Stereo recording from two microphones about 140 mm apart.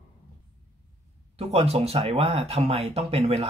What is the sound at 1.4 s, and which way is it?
Speech, 50° right (ahead or behind).